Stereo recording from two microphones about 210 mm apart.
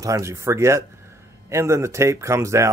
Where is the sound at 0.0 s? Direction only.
15° right (ahead or behind).